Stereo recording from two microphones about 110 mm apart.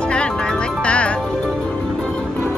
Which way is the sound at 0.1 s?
10° left (ahead or behind).